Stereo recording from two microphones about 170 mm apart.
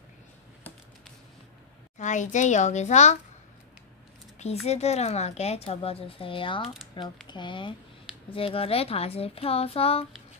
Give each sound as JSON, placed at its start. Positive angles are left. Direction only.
{"t": 2.0, "sound": "a woman's voice", "side_deg": 45}
{"t": 4.6, "sound": "speech", "side_deg": 40}